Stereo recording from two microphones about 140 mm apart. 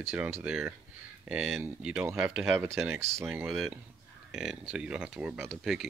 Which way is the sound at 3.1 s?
15° right (ahead or behind).